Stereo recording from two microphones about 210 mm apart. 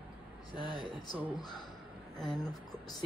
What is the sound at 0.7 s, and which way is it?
Speech, 25° right (ahead or behind).